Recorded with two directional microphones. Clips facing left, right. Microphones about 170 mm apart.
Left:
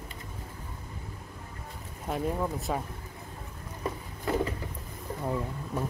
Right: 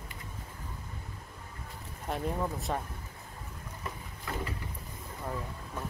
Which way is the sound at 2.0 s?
Centre (ahead or behind).